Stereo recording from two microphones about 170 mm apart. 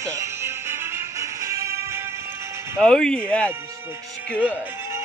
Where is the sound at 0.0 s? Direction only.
15° right (ahead or behind).